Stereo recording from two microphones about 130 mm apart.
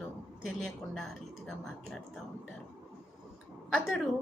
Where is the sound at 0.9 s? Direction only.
5° left (ahead or behind).